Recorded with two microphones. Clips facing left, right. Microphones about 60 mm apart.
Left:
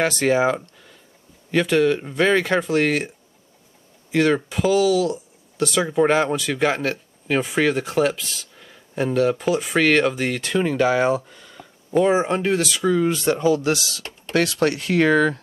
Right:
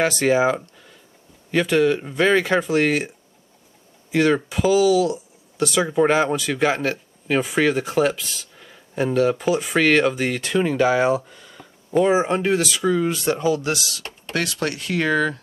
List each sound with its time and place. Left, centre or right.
0.0 s speech: centre
4.1 s speech: centre
13.5 s speech: left